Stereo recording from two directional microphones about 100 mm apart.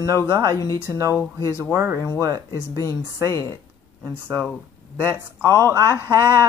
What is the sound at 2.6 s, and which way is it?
Speech, 30° left (ahead or behind).